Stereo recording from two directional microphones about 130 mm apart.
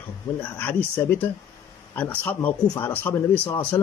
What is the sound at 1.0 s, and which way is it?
A man's voice, 15° left (ahead or behind).